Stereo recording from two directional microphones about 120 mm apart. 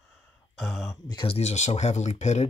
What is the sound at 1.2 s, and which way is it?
Speech, 60° left (ahead or behind).